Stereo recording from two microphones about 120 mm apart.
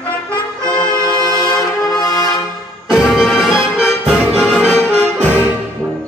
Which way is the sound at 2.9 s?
Centre (ahead or behind).